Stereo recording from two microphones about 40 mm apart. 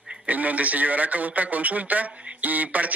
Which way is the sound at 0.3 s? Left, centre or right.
Right.